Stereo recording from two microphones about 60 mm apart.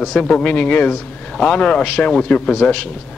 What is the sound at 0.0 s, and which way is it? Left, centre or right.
A man's voice, centre.